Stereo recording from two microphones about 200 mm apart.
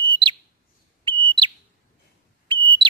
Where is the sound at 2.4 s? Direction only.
25° right (ahead or behind).